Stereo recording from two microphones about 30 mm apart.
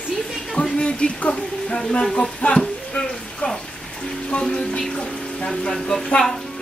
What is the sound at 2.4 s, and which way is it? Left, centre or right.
Speech, left.